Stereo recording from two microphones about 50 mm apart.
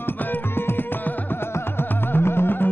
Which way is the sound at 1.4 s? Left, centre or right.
Left.